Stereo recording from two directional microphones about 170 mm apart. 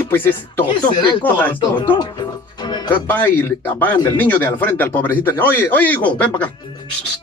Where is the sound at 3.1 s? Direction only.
10° left (ahead or behind).